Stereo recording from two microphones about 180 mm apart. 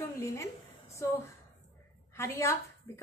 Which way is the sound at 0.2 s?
15° left (ahead or behind).